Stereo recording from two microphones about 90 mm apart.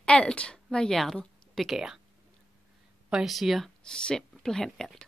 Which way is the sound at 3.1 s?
5° right (ahead or behind).